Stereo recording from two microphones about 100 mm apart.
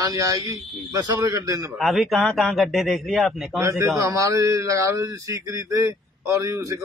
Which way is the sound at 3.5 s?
30° right (ahead or behind).